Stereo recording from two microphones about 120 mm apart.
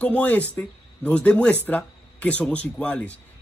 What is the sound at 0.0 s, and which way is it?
Speech, 15° left (ahead or behind).